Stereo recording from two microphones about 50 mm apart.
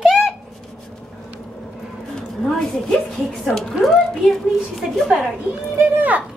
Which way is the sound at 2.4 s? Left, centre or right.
Centre.